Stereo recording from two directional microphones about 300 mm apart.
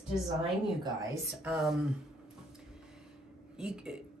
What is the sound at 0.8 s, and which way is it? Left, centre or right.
Speech, centre.